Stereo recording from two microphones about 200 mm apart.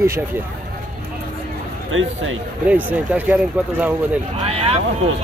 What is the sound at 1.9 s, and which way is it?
Speech, 80° right.